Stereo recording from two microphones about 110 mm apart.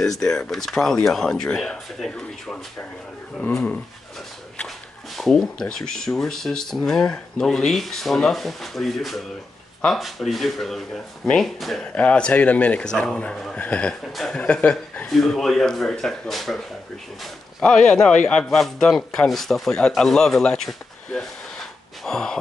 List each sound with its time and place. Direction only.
0.0 s speech: 5° left (ahead or behind)
3.4 s a man's voice: 15° left (ahead or behind)
4.6 s speech: centre (ahead or behind)
11.9 s a man's voice: 10° left (ahead or behind)
15.0 s speech: centre (ahead or behind)